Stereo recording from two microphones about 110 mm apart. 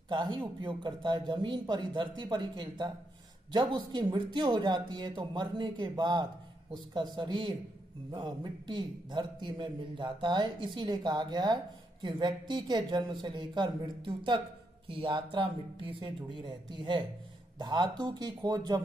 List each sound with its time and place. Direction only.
0.1 s a man's voice: 45° right (ahead or behind)